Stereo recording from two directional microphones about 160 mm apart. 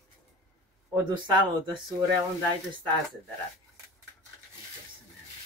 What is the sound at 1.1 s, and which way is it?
Speech, 30° right (ahead or behind).